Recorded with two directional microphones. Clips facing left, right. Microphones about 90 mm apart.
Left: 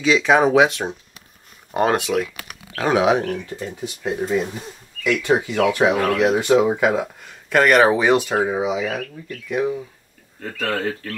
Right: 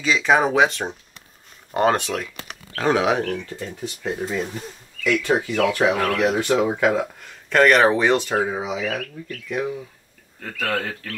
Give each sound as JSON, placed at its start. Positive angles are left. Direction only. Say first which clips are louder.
{"t": 0.0, "sound": "speech", "louder": "left 3 dB", "side_deg": 0}
{"t": 10.6, "sound": "speech", "louder": "left 2 dB", "side_deg": 30}